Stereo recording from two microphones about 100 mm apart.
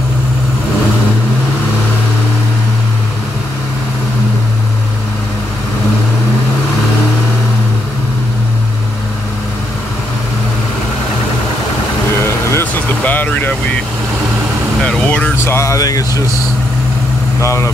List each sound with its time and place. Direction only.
12.2 s vehicle: 25° left (ahead or behind)
13.0 s vehicle: 15° left (ahead or behind)
14.8 s vehicle: 5° left (ahead or behind)
15.3 s vehicle: 25° left (ahead or behind)
17.4 s vehicle: 30° left (ahead or behind)